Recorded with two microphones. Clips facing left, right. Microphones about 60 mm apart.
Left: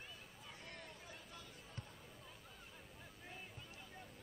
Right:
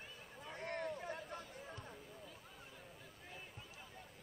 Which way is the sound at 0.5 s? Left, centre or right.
Right.